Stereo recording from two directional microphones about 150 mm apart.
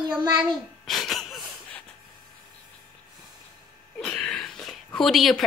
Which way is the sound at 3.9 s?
5° left (ahead or behind).